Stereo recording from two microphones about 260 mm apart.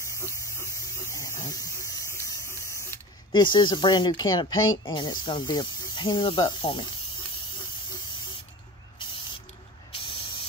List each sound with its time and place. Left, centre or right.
1.1 s spray: centre
4.8 s speech: centre
9.9 s spray: left